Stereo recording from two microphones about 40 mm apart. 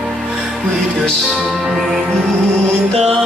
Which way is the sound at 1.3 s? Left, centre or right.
Centre.